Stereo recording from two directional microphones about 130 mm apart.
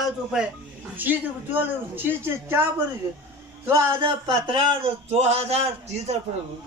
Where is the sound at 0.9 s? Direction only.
15° right (ahead or behind).